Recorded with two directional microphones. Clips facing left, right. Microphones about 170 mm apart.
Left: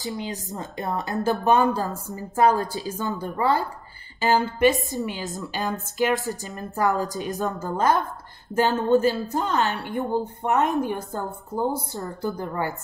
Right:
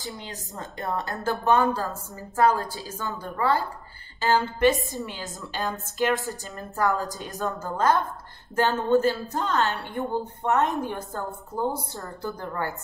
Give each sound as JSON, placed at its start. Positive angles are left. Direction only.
{"t": 0.2, "sound": "speech", "side_deg": 15}